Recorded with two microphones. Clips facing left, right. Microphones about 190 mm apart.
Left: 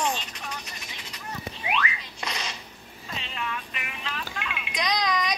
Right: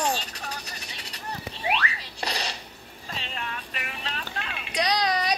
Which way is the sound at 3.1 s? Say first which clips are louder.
Left 2 dB; 40° right (ahead or behind).